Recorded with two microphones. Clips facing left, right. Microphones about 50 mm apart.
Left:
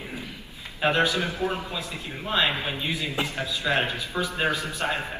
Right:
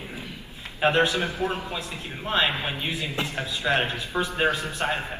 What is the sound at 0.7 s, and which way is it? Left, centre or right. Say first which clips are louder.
Speech: right 1 dB; centre.